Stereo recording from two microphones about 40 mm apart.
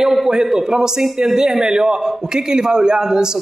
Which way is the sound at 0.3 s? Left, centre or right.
Centre.